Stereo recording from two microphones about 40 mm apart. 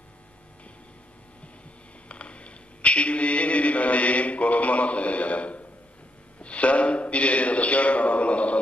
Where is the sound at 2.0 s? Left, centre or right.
Left.